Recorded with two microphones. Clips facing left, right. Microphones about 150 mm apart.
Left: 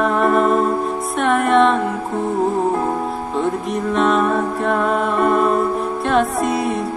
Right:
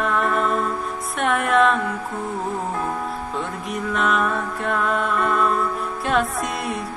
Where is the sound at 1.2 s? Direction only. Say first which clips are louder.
Left 4 dB; centre (ahead or behind).